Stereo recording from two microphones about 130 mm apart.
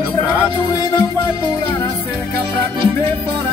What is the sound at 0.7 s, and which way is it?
Music, 30° left (ahead or behind).